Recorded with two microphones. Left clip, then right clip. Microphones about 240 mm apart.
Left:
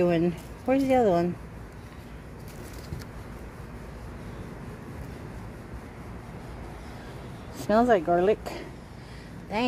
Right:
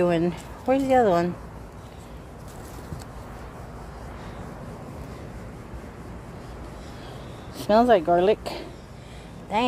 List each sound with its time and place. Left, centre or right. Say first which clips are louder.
0.0 s speech: right 2 dB; centre
7.5 s speech: right 4 dB; centre